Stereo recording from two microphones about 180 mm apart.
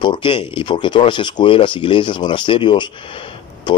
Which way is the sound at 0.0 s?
25° left (ahead or behind).